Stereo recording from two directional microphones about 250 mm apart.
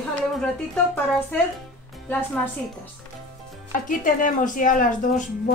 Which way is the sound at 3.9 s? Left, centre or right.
Left.